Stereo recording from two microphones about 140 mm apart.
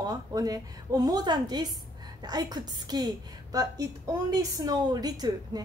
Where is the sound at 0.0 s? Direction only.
30° right (ahead or behind).